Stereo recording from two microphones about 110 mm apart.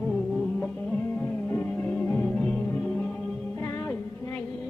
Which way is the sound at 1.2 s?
15° left (ahead or behind).